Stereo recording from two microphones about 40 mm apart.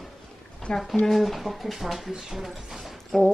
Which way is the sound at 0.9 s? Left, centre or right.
Centre.